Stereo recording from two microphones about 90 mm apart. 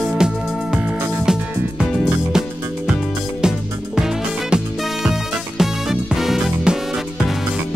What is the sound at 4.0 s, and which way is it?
Music, 5° right (ahead or behind).